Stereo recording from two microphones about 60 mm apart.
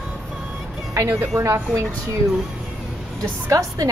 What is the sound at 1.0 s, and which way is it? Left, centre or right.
Speech, right.